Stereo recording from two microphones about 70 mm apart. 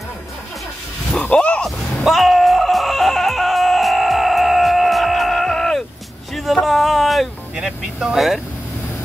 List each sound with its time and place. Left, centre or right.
1.3 s music: centre
1.6 s a sound: centre
7.8 s speech: centre